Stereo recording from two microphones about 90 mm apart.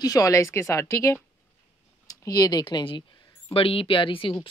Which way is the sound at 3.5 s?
90° left.